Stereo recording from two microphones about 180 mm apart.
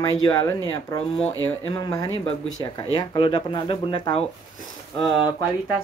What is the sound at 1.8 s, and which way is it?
Speech, 20° left (ahead or behind).